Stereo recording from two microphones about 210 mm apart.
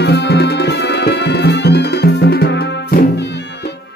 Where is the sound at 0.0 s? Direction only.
50° left (ahead or behind).